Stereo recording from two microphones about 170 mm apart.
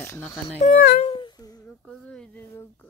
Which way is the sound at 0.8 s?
65° left (ahead or behind).